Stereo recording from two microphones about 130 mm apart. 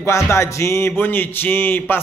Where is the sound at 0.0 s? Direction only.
20° left (ahead or behind).